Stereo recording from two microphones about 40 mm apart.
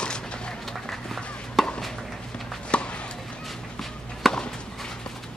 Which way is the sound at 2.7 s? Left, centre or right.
Left.